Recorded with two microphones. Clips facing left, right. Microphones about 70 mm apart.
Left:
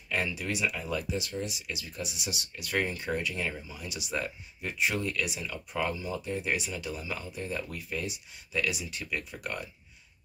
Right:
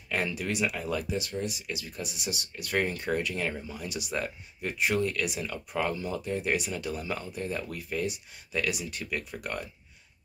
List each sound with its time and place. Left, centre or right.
0.1 s speech: right
2.9 s speech: right